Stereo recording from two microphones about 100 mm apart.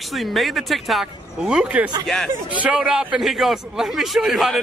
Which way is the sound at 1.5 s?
10° right (ahead or behind).